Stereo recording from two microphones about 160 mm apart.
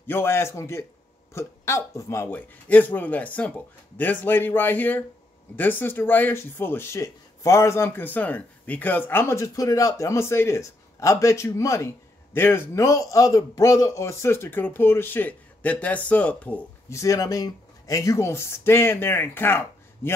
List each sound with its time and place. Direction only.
0.0 s speech: 15° left (ahead or behind)
17.0 s speech: 20° left (ahead or behind)